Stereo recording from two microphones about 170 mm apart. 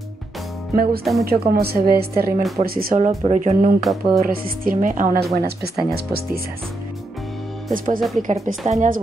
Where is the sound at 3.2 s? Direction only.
40° right (ahead or behind).